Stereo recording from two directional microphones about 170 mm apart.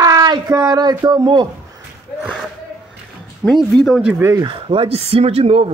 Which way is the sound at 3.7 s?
Centre (ahead or behind).